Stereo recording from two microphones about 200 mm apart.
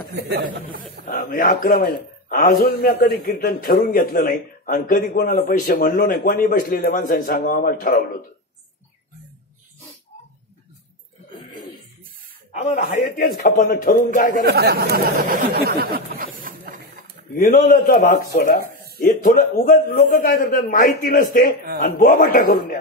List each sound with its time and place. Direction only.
0.0 s speech: 50° right (ahead or behind)
1.0 s a man's voice: 45° left (ahead or behind)
11.3 s cough: 20° left (ahead or behind)
12.5 s a man's voice: 35° left (ahead or behind)
12.9 s a man's voice: 45° left (ahead or behind)
14.4 s speech: 50° right (ahead or behind)
17.4 s a man's voice: 45° left (ahead or behind)